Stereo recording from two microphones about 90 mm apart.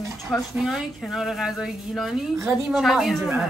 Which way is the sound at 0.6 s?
5° right (ahead or behind).